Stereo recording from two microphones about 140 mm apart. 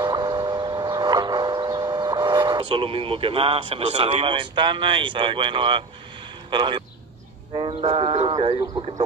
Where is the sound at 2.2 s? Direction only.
30° right (ahead or behind).